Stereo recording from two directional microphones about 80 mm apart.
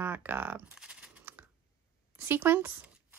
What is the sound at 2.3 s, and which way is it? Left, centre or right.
Speech, right.